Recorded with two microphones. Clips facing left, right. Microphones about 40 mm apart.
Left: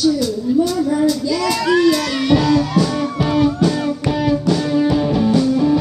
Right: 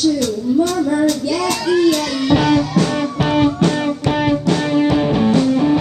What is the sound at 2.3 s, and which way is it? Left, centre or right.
Music, right.